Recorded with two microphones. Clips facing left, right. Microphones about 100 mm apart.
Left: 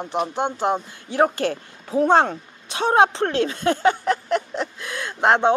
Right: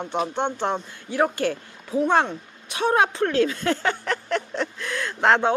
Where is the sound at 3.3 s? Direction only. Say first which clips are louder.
Left 1 dB; 25° left (ahead or behind).